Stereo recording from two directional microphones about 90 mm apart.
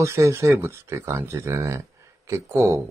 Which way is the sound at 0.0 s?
30° right (ahead or behind).